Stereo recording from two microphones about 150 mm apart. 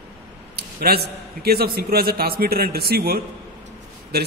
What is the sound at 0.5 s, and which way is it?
A man's voice, 90° right.